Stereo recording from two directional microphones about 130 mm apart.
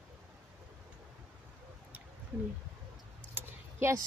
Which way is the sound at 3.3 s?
20° right (ahead or behind).